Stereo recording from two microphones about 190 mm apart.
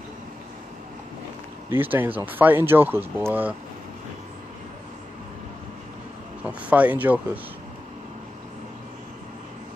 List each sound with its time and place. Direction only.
1.7 s speech: 10° right (ahead or behind)
6.4 s speech: 5° right (ahead or behind)